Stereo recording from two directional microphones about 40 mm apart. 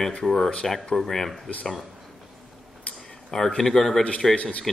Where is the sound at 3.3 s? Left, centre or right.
Centre.